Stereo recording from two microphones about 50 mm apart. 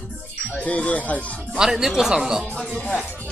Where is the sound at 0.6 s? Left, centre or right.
Left.